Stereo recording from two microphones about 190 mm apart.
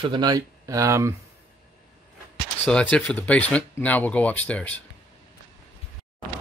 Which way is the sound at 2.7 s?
5° left (ahead or behind).